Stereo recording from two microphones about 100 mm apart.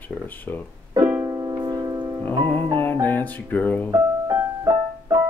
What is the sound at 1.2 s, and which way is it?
Music, 35° right (ahead or behind).